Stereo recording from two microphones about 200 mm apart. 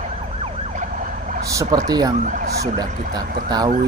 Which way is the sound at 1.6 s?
15° right (ahead or behind).